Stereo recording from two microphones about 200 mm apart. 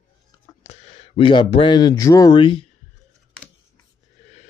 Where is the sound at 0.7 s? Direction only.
35° left (ahead or behind).